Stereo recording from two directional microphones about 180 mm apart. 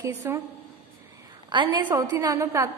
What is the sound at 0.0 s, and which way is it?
Speech, 15° right (ahead or behind).